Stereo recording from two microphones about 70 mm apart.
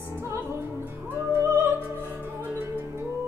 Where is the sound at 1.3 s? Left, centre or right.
Right.